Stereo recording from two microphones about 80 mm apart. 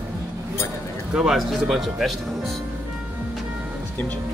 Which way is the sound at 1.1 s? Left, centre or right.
Centre.